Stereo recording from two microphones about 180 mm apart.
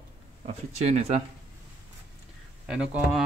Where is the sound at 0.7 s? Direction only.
35° right (ahead or behind).